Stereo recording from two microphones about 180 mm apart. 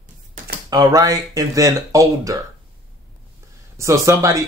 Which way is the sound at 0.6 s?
20° right (ahead or behind).